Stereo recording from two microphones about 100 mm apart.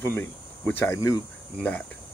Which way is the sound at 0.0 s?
25° left (ahead or behind).